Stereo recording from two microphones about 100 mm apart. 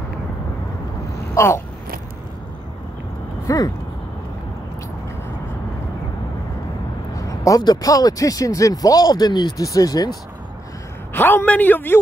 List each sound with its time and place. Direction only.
1.3 s a sound: 30° left (ahead or behind)
3.4 s speech: 40° left (ahead or behind)
7.2 s speech: 35° left (ahead or behind)
11.1 s speech: 20° left (ahead or behind)